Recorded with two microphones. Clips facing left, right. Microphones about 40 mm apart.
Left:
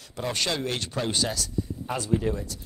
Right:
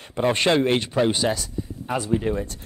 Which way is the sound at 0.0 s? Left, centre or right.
Right.